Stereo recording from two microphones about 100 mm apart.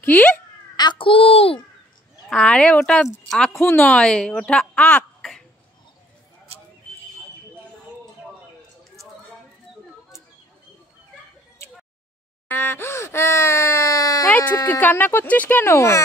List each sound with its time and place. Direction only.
0.0 s speech: 15° left (ahead or behind)
0.7 s a child's voice: 55° left (ahead or behind); by 1.6 s 70° left (ahead or behind)
2.2 s a woman's voice: 5° left (ahead or behind)
12.4 s speech: 20° left (ahead or behind)
14.7 s speech: 15° left (ahead or behind)